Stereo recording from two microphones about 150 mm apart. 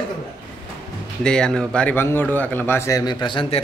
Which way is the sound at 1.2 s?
5° left (ahead or behind).